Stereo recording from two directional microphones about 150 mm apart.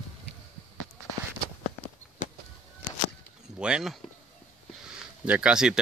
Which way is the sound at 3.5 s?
5° right (ahead or behind).